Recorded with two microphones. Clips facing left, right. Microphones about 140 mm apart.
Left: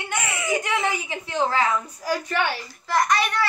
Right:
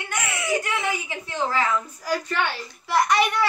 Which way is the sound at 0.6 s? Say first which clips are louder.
Left 2 dB; 20° left (ahead or behind).